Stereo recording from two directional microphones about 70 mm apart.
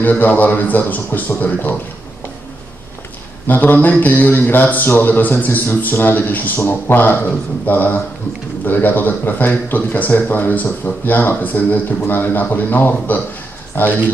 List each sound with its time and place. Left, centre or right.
0.0 s speech: left
3.4 s speech: left